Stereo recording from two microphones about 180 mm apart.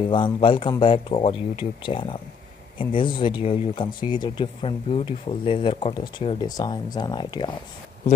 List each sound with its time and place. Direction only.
0.1 s speech: 30° left (ahead or behind)